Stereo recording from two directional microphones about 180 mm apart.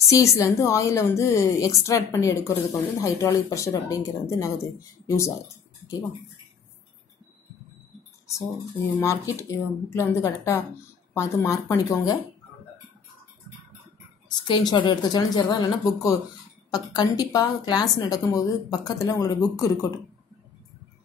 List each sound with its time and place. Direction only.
0.1 s a woman's voice: 15° left (ahead or behind)
9.0 s a woman's voice: 15° left (ahead or behind)
14.5 s a woman's voice: 25° left (ahead or behind)